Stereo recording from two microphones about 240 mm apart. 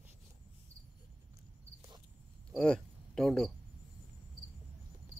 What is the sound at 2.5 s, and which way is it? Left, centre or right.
Speech, centre.